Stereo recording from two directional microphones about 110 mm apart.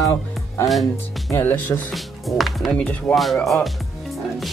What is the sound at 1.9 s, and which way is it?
Speech, centre (ahead or behind).